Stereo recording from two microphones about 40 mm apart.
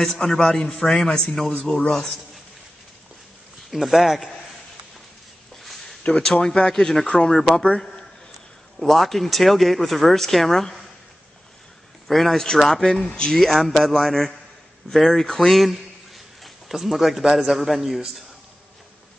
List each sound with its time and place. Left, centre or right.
0.0 s a man's voice: centre
3.7 s speech: centre
5.6 s a sound: centre
6.0 s a man's voice: left
7.2 s speech: left
8.7 s speech: centre
12.1 s speech: centre
13.0 s speech: left
13.3 s speech: centre
16.4 s a sound: centre
17.4 s a man's voice: centre